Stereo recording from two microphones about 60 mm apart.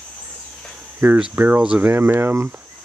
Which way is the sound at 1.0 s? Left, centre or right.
Right.